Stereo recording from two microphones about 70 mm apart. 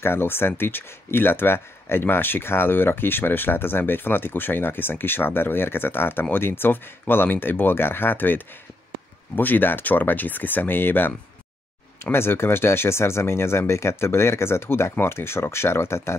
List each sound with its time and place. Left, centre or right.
0.0 s speech: left